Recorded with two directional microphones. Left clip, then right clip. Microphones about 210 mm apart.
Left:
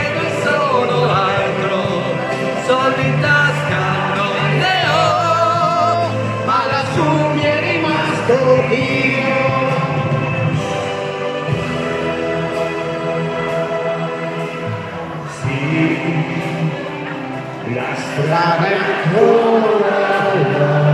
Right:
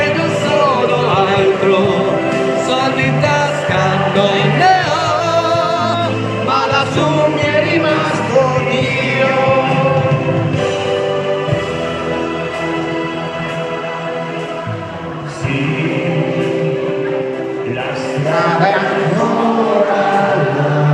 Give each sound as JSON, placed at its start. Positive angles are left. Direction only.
{"t": 2.7, "sound": "music", "side_deg": -20}
{"t": 7.4, "sound": "music", "side_deg": 0}
{"t": 18.4, "sound": "a sound", "side_deg": 0}